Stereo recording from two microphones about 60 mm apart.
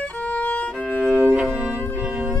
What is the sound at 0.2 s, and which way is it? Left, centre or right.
Violin, left.